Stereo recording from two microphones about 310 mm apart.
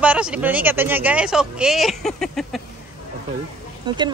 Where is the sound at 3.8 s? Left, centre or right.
Centre.